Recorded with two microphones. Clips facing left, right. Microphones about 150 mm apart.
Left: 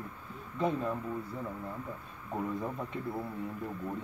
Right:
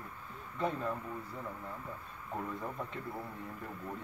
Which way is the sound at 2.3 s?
10° left (ahead or behind).